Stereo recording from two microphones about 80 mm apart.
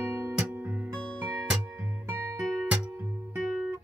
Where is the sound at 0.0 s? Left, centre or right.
Right.